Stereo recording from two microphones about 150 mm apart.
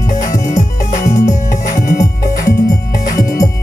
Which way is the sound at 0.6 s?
55° left (ahead or behind).